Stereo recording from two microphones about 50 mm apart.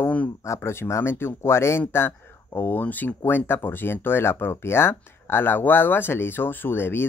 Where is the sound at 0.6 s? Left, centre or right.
Left.